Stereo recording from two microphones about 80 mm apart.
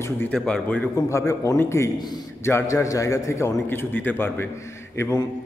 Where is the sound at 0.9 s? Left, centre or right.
Left.